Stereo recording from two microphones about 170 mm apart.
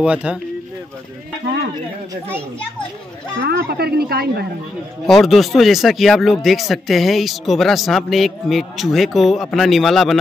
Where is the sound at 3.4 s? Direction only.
80° right.